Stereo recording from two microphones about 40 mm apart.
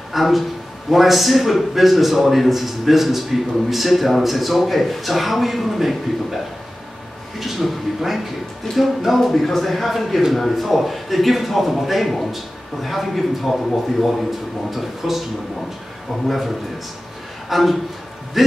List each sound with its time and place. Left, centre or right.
0.1 s a man's voice: centre
14.7 s a man's voice: centre
16.3 s a man's voice: centre